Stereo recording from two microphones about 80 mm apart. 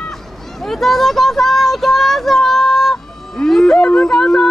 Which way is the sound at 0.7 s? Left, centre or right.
Centre.